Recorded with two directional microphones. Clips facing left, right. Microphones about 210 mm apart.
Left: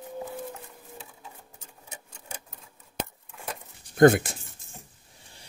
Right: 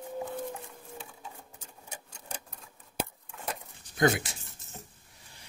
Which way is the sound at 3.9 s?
55° left (ahead or behind).